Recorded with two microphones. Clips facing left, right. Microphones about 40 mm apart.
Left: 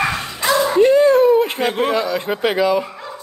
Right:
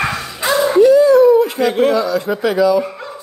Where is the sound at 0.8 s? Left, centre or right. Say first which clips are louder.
Right 4 dB; left.